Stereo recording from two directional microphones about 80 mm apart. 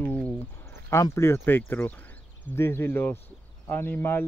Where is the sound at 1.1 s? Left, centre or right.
Left.